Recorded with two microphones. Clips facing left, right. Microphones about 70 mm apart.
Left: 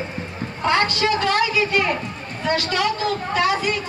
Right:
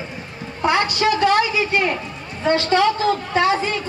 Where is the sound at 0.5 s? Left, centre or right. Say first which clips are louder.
Right 1 dB; centre.